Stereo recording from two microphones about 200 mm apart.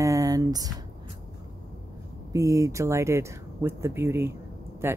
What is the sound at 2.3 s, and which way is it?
Speech, 15° right (ahead or behind).